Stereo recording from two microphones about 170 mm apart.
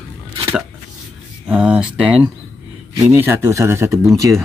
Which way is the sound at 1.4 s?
5° right (ahead or behind).